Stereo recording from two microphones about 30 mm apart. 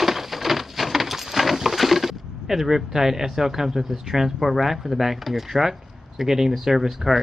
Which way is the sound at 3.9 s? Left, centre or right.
Centre.